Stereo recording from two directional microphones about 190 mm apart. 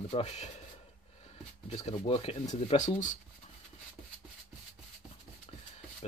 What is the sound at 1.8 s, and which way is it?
Speech, 30° left (ahead or behind).